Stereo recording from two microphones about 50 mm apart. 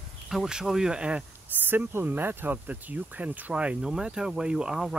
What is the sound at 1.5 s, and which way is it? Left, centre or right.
Speech, right.